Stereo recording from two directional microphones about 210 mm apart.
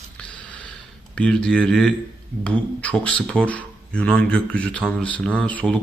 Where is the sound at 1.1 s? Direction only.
5° left (ahead or behind).